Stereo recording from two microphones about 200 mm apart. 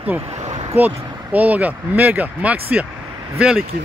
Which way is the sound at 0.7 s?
10° right (ahead or behind).